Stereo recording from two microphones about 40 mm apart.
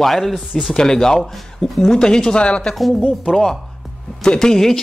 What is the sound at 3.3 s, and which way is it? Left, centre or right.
Speech, centre.